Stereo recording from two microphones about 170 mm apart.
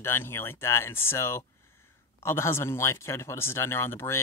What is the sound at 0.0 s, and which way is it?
Speech, 15° left (ahead or behind).